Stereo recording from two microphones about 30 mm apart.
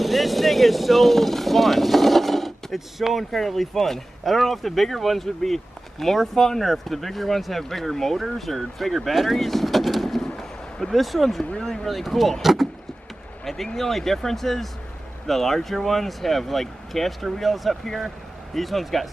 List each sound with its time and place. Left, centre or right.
0.0 s vehicle: centre
3.0 s speech: centre
6.3 s speech: centre
6.6 s speech: centre
9.1 s vehicle: centre
11.6 s speech: centre
11.9 s speech: centre
12.4 s speech: centre
13.7 s speech: centre